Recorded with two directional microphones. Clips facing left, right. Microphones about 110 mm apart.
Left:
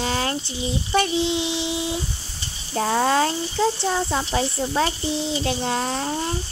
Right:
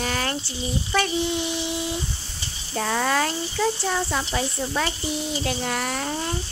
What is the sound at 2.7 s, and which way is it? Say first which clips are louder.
A child's voice: left 3 dB; 30° left (ahead or behind).